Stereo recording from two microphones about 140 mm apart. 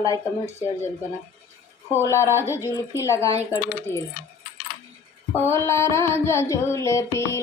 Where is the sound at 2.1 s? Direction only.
20° left (ahead or behind).